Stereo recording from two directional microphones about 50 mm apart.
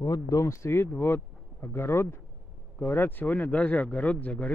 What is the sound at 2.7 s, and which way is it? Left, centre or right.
Speech, left.